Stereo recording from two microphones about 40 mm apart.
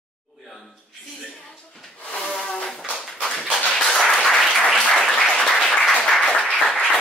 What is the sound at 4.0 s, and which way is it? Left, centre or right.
Applause, centre.